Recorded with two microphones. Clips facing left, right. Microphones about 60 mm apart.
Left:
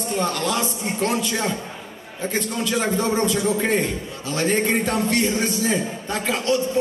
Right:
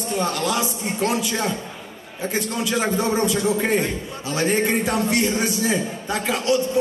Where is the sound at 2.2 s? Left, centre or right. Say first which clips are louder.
Even; centre.